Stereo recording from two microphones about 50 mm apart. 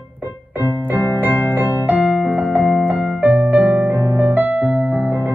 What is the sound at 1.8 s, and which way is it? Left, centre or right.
Keyboard, right.